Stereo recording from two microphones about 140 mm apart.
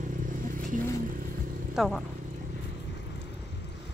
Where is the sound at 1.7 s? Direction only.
5° right (ahead or behind).